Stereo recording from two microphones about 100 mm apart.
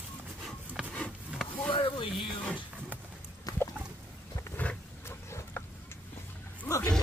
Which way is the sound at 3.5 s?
40° left (ahead or behind).